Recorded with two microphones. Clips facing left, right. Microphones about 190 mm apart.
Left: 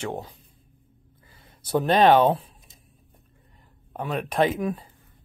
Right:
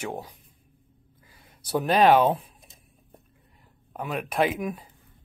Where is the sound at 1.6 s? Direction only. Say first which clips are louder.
Left 2 dB; 10° right (ahead or behind).